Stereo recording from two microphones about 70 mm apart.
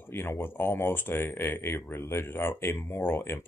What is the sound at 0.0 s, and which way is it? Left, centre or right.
Speech, left.